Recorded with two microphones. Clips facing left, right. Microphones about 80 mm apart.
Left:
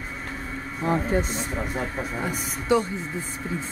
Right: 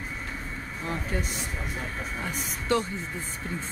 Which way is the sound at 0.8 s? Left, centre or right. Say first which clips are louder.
Left 9 dB; left.